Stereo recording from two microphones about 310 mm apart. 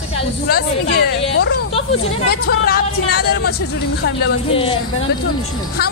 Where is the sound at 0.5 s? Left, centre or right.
Left.